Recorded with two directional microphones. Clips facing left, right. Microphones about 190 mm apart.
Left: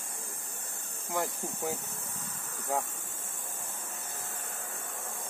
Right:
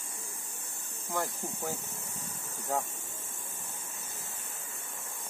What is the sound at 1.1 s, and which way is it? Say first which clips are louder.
Speech: left 1 dB; 20° left (ahead or behind).